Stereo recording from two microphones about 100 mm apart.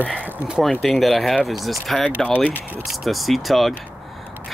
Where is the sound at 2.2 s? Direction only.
15° left (ahead or behind).